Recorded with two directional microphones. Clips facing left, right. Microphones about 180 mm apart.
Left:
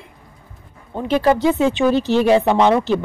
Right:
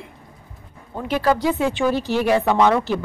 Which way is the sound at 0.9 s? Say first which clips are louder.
Left 4 dB; 25° left (ahead or behind).